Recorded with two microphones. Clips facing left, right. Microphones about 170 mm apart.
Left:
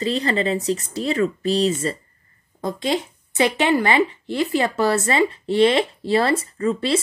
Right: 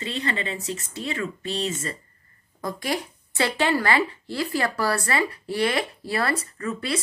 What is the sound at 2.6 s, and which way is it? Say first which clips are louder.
Speech: left 5 dB; 20° left (ahead or behind).